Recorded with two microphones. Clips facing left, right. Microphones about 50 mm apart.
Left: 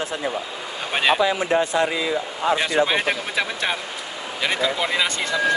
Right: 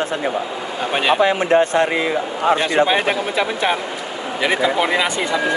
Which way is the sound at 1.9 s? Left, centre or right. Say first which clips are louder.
Right 4 dB; right.